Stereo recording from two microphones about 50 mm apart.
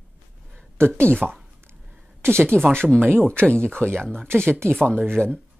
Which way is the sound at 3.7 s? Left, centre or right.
Right.